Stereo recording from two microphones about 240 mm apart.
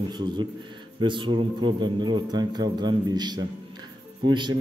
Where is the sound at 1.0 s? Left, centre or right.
Centre.